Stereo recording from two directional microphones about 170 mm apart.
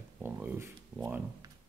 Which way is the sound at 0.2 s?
10° right (ahead or behind).